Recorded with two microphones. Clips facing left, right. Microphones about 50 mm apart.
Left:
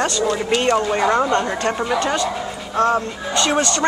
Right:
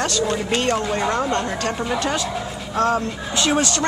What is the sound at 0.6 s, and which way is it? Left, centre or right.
Speech, centre.